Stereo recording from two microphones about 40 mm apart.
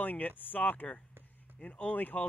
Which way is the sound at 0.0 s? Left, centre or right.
Left.